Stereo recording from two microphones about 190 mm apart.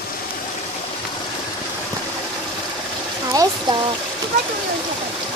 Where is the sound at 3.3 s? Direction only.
20° right (ahead or behind).